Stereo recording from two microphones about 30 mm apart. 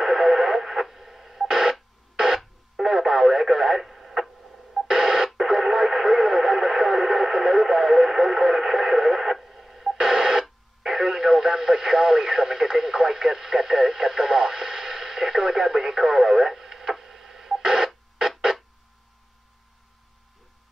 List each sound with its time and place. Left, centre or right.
0.0 s radio: centre